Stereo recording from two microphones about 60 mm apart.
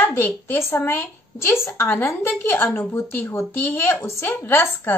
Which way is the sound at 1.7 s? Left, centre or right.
Left.